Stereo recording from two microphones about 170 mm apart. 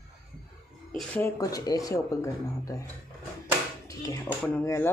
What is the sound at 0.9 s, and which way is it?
Speech, 15° left (ahead or behind).